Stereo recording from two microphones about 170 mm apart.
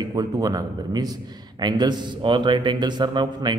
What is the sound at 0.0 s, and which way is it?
A man's voice, 25° right (ahead or behind).